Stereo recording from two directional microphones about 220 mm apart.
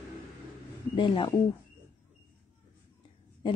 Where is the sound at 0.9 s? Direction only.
25° left (ahead or behind).